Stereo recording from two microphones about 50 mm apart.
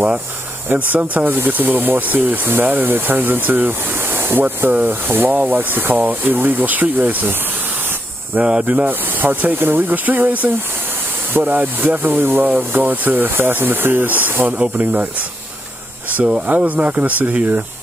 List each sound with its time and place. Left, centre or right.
0.7 s speech: right
5.3 s speech: right
8.4 s speech: right
8.6 s speech: right
11.6 s speech: right
14.6 s speech: right
16.1 s speech: right